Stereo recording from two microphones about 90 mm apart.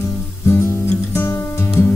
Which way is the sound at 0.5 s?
30° left (ahead or behind).